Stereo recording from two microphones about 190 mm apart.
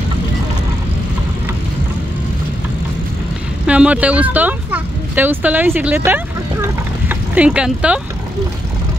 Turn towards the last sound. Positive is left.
turn(degrees=-5)  # may be behind; listen again after turning